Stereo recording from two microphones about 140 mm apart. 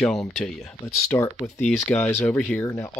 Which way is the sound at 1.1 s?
20° left (ahead or behind).